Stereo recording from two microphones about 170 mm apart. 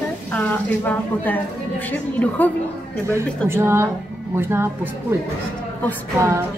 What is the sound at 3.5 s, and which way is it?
A woman's voice, 15° right (ahead or behind).